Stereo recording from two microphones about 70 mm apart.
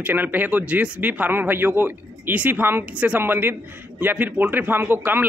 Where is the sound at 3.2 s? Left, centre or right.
Right.